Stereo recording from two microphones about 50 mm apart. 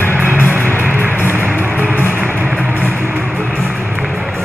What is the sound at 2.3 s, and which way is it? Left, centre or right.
Vehicle, right.